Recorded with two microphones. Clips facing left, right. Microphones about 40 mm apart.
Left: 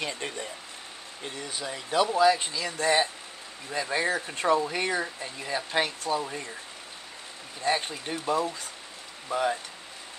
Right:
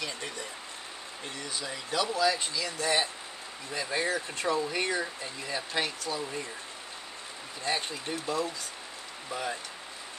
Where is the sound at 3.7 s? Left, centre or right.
Centre.